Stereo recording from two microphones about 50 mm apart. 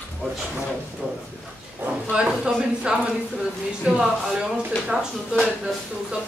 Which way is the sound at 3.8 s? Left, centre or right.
Centre.